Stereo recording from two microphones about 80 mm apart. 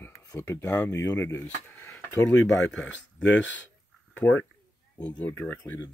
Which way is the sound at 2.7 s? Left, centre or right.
Centre.